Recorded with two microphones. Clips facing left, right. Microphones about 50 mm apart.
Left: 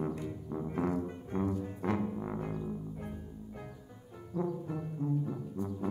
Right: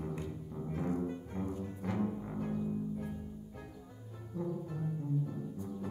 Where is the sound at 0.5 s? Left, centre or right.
Left.